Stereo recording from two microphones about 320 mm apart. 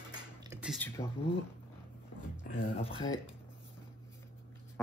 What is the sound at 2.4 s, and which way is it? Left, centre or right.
Speech, left.